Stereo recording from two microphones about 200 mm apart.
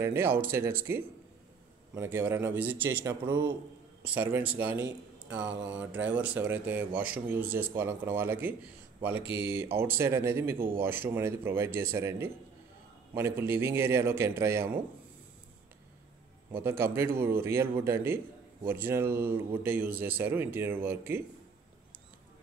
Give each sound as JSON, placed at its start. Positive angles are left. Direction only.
{"t": 0.0, "sound": "a man's voice", "side_deg": -10}
{"t": 3.3, "sound": "a man's voice", "side_deg": -20}
{"t": 4.1, "sound": "a man's voice", "side_deg": -10}
{"t": 5.5, "sound": "mantra", "side_deg": -65}
{"t": 5.8, "sound": "a man's voice", "side_deg": -5}
{"t": 16.5, "sound": "a man's voice", "side_deg": -10}